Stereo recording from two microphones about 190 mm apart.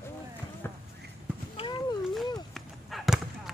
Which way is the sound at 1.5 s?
25° left (ahead or behind).